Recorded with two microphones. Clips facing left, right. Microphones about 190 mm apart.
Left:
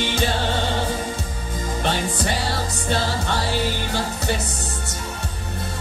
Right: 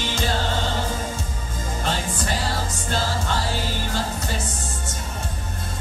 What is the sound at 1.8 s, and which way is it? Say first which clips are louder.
Music: left 3 dB; 65° left (ahead or behind).